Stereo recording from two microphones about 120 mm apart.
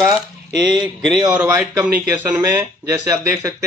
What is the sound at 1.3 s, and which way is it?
Speech, 15° right (ahead or behind).